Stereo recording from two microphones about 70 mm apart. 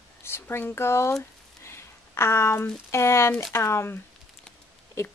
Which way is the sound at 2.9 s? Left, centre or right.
Left.